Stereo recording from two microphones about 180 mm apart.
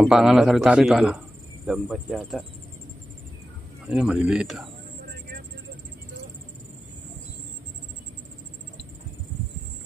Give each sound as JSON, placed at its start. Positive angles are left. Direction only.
{"t": 0.0, "sound": "a man's voice", "side_deg": -5}
{"t": 3.8, "sound": "a man's voice", "side_deg": -5}